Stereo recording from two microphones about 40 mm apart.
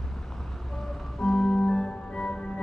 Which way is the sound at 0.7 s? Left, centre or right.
Centre.